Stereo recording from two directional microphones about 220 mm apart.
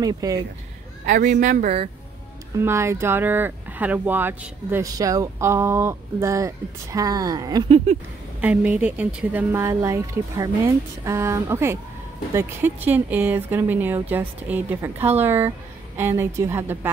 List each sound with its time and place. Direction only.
0.0 s speech: 15° right (ahead or behind)
1.0 s speech: 40° right (ahead or behind)
2.6 s speech: 10° right (ahead or behind); by 8.0 s 30° right (ahead or behind)
8.4 s speech: 5° right (ahead or behind)